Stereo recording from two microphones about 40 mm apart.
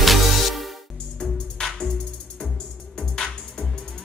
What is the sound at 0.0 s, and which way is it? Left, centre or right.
Music, centre.